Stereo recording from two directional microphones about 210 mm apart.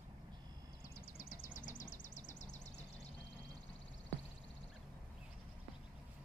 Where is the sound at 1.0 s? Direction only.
40° left (ahead or behind).